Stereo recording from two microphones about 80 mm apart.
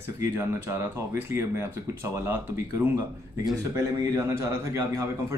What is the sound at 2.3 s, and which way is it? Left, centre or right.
Speech, right.